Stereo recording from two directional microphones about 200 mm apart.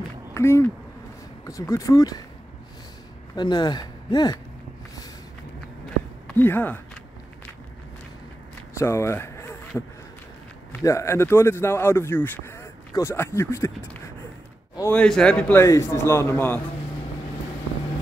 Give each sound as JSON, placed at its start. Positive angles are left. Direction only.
{"t": 0.3, "sound": "a man's voice", "side_deg": 15}
{"t": 3.3, "sound": "speech", "side_deg": 20}
{"t": 6.2, "sound": "speech", "side_deg": 10}
{"t": 8.7, "sound": "a sound", "side_deg": 15}
{"t": 10.7, "sound": "a man's voice", "side_deg": 15}